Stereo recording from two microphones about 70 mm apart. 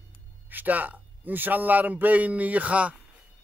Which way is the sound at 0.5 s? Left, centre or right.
Right.